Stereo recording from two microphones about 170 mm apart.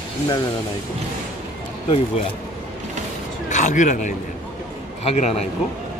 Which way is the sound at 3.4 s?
45° left (ahead or behind).